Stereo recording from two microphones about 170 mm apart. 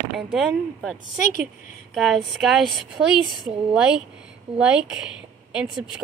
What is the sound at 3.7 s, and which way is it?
A woman's voice, 5° right (ahead or behind).